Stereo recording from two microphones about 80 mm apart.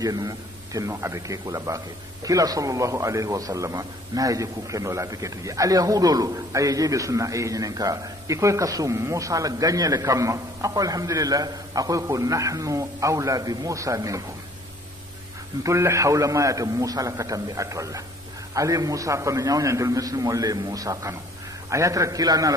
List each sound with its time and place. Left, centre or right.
0.0 s a man's voice: right
15.6 s a man's voice: right